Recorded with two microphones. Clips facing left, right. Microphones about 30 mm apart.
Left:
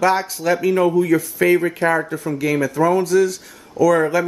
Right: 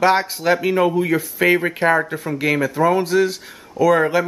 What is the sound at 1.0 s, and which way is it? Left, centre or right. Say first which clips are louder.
Speech: left 2 dB; right.